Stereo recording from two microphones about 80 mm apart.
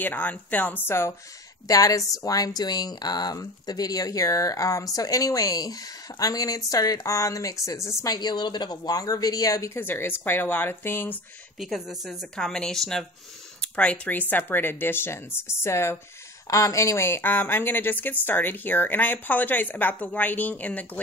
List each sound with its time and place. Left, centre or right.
0.0 s a woman's voice: left
1.7 s speech: left
8.1 s speech: left
9.8 s a woman's voice: left
11.6 s a woman's voice: centre; by 16.0 s left
16.4 s a woman's voice: left; by 21.0 s centre